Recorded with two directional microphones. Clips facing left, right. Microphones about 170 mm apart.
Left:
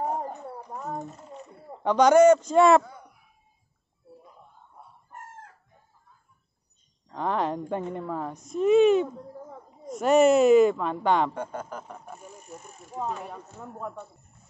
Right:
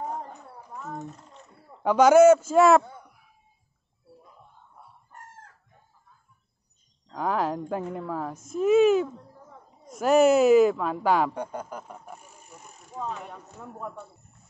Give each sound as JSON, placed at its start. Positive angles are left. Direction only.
{"t": 0.0, "sound": "a sound", "side_deg": 30}
{"t": 0.9, "sound": "mechanisms", "side_deg": 0}
{"t": 1.8, "sound": "speech", "side_deg": -5}
{"t": 7.2, "sound": "speech", "side_deg": -5}
{"t": 12.9, "sound": "speech", "side_deg": 15}